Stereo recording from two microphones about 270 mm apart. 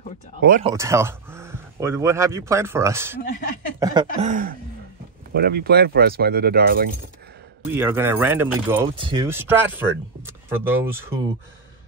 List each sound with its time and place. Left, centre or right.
0.4 s speech: right
0.7 s speech: centre
4.3 s speech: right
7.6 s speech: centre